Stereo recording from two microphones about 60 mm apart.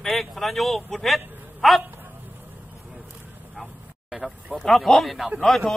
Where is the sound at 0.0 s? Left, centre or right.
Centre.